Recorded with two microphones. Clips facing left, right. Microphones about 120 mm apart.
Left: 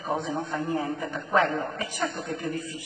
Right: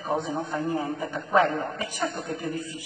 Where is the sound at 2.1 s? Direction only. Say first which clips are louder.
Even; 25° right (ahead or behind).